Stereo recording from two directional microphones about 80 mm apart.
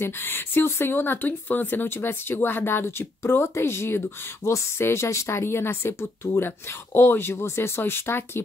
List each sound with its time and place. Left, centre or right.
0.0 s a woman's voice: left